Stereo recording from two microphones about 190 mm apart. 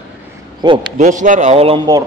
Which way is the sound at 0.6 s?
25° right (ahead or behind).